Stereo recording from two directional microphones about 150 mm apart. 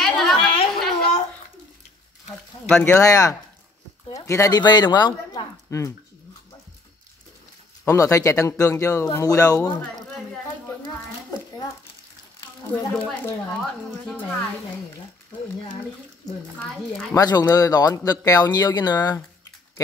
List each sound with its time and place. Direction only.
0.0 s a sound: centre (ahead or behind)
2.7 s a woman's voice: 10° left (ahead or behind)
3.0 s speech: 20° left (ahead or behind)
7.8 s speech: 20° left (ahead or behind)
12.4 s a woman's voice: 10° left (ahead or behind)
17.1 s speech: 25° left (ahead or behind)